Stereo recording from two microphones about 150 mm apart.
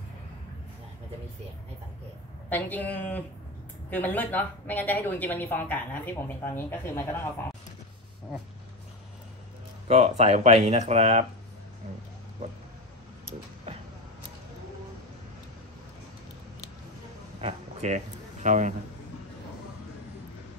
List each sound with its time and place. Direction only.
2.5 s a woman's voice: 10° left (ahead or behind)
9.8 s speech: 45° right (ahead or behind)
17.4 s a sound: 45° right (ahead or behind)